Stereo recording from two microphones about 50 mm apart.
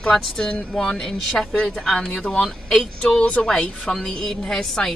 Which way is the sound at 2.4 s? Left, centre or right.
Centre.